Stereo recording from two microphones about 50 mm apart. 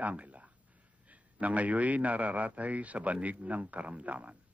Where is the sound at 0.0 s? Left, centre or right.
Right.